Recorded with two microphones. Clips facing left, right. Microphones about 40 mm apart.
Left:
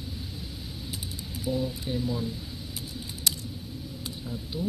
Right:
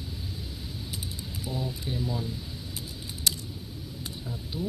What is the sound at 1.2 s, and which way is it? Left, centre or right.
Speech, centre.